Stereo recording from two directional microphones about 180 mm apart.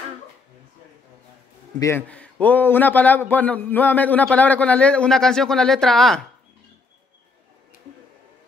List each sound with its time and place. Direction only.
1.8 s a man's voice: 15° left (ahead or behind)